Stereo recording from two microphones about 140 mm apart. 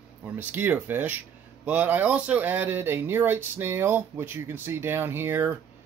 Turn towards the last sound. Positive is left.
turn(degrees=-15)  # may be behind; listen again after turning